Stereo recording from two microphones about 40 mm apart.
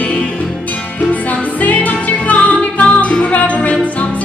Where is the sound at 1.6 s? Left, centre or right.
Left.